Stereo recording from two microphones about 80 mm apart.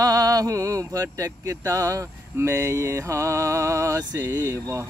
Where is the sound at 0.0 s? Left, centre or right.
Right.